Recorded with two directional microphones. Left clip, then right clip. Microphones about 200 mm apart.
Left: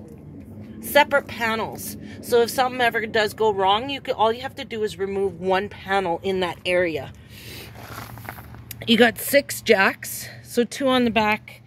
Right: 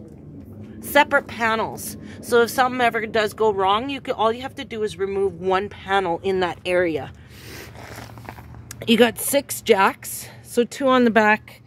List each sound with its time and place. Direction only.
0.9 s a woman's voice: 20° right (ahead or behind)
2.8 s speech: 10° right (ahead or behind)
8.8 s speech: 15° right (ahead or behind)
9.2 s speech: centre (ahead or behind)
11.1 s a woman's voice: 25° right (ahead or behind)